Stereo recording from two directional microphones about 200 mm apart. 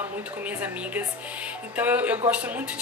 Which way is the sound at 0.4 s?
10° right (ahead or behind).